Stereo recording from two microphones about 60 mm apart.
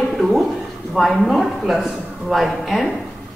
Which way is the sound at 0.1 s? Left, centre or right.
Centre.